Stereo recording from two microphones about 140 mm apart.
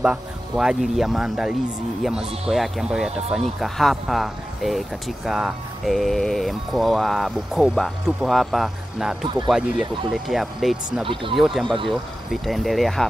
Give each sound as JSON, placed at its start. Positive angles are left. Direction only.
{"t": 0.0, "sound": "speech", "side_deg": -5}
{"t": 11.6, "sound": "speech", "side_deg": -35}
{"t": 11.9, "sound": "speech", "side_deg": 0}